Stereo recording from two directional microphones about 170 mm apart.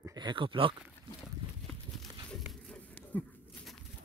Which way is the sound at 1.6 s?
Centre (ahead or behind).